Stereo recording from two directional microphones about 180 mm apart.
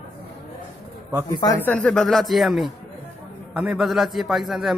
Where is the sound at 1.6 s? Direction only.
5° left (ahead or behind).